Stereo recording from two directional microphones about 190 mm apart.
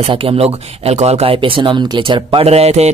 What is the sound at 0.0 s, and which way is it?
Speech, 30° right (ahead or behind).